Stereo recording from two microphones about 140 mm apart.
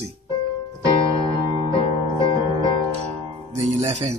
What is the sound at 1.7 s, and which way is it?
Music, 35° left (ahead or behind).